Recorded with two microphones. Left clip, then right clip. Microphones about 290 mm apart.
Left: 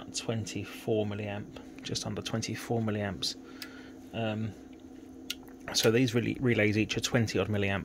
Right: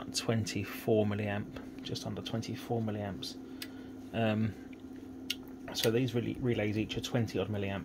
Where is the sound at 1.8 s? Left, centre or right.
Centre.